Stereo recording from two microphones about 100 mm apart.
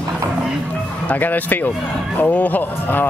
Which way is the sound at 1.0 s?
15° left (ahead or behind).